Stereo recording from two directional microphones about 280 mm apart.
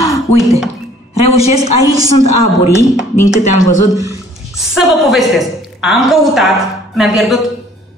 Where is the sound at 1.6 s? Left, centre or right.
Centre.